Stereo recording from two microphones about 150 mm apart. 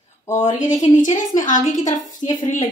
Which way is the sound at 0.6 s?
55° left (ahead or behind).